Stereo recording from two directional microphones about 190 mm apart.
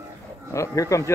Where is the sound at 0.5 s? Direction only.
15° left (ahead or behind).